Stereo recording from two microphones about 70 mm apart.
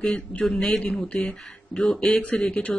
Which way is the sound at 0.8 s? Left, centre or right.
Centre.